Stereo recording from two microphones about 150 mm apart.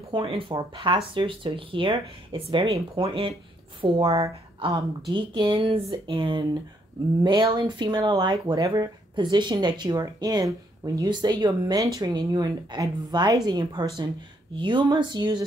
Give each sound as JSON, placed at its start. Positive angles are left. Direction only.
{"t": 0.1, "sound": "speech", "side_deg": -35}
{"t": 3.8, "sound": "a woman's voice", "side_deg": -25}